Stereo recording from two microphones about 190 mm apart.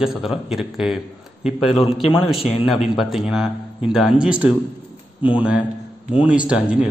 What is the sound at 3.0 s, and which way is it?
A man's voice, centre (ahead or behind).